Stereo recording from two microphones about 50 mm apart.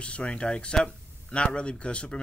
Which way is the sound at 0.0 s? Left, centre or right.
Left.